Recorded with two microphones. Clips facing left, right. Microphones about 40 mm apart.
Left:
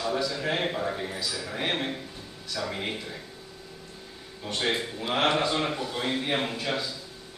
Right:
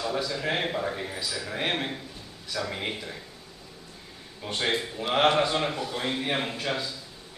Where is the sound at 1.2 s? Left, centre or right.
Centre.